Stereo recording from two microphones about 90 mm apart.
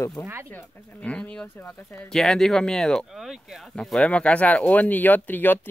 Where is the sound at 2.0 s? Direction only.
5° left (ahead or behind).